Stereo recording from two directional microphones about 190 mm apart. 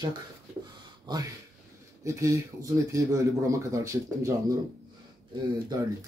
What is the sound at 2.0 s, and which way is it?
Speech, 15° right (ahead or behind).